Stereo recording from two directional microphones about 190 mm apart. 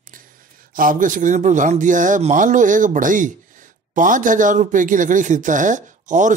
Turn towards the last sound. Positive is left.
turn(degrees=-40)  # may be behind; listen again after turning